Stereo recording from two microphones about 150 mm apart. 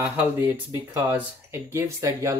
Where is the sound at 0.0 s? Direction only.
15° right (ahead or behind).